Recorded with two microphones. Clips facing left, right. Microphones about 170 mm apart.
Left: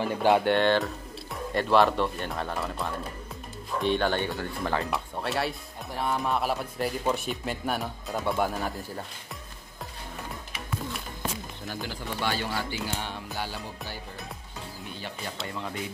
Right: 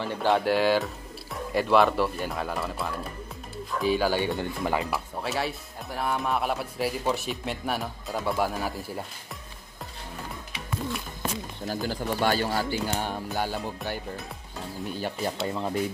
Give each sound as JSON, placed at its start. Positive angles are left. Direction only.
{"t": 0.0, "sound": "speech", "side_deg": 10}
{"t": 0.4, "sound": "speech", "side_deg": -5}
{"t": 4.9, "sound": "speech", "side_deg": 0}
{"t": 11.6, "sound": "speech", "side_deg": -40}